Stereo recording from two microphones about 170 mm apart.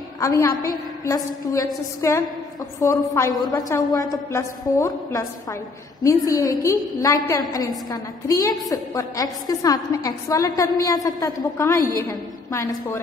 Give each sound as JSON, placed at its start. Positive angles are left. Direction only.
{"t": 0.2, "sound": "a woman's voice", "side_deg": 20}